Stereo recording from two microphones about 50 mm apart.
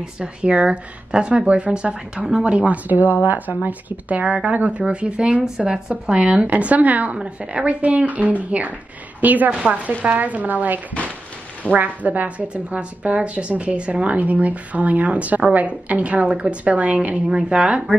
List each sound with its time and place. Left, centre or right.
0.2 s a woman's voice: centre
6.4 s a woman's voice: right